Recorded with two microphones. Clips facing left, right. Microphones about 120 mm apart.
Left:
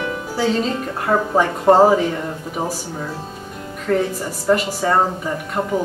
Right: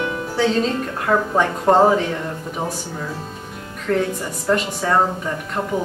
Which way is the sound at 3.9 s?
5° left (ahead or behind).